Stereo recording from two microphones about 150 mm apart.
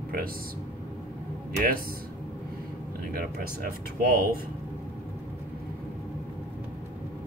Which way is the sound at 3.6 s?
75° right (ahead or behind).